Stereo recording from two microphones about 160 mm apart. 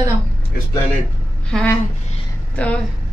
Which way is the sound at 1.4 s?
5° left (ahead or behind).